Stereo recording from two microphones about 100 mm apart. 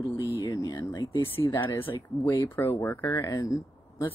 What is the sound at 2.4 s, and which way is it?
Speech, 25° left (ahead or behind).